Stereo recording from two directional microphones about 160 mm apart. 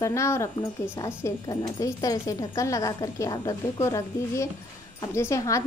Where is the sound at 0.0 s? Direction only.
20° left (ahead or behind).